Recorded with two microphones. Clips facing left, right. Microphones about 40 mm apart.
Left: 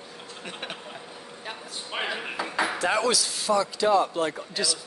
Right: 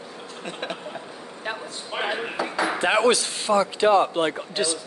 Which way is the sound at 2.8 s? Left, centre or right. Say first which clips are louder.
Right 7 dB; right.